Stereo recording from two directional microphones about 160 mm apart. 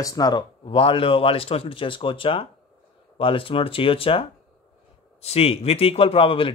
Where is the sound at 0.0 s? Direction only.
25° left (ahead or behind).